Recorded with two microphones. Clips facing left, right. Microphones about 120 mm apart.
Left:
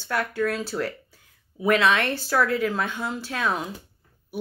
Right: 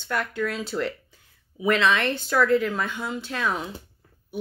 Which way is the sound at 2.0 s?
5° left (ahead or behind).